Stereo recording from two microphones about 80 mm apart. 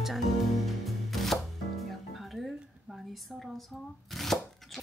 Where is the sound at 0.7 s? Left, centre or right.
Centre.